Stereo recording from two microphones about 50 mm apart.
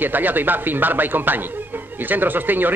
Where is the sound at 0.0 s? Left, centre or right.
Right.